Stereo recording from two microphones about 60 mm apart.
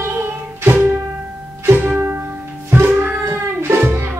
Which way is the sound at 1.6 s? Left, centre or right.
Right.